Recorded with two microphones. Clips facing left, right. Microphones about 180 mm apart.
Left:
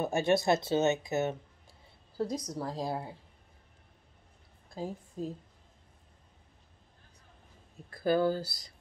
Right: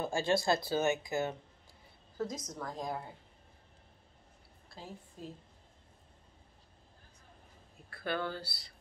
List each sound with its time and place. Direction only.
0.0 s speech: 20° left (ahead or behind)
4.7 s a woman's voice: 45° left (ahead or behind)
7.9 s speech: 40° left (ahead or behind)